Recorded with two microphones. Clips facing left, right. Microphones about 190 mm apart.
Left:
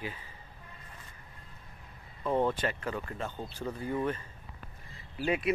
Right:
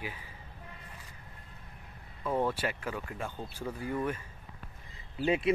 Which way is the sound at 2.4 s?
10° right (ahead or behind).